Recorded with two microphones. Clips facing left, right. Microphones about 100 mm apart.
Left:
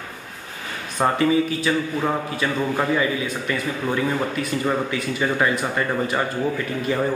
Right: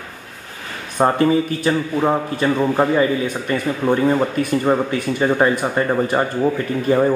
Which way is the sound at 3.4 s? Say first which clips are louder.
Right 8 dB; 35° right (ahead or behind).